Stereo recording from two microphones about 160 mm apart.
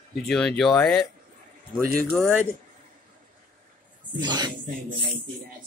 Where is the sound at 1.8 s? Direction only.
65° right (ahead or behind).